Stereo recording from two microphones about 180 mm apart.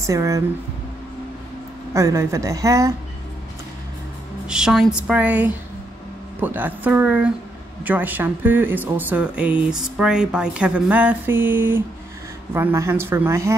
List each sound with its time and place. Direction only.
0.0 s speech: 15° right (ahead or behind)
2.0 s speech: 15° right (ahead or behind)
4.5 s a woman's voice: 5° right (ahead or behind)